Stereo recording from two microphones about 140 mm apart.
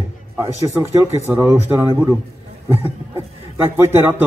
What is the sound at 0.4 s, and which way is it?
A man's voice, 15° right (ahead or behind).